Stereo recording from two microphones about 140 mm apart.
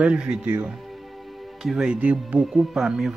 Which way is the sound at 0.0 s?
5° right (ahead or behind).